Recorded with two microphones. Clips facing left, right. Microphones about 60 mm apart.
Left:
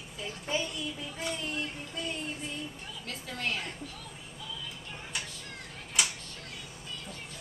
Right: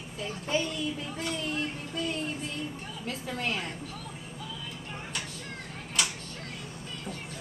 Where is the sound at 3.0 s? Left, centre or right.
Centre.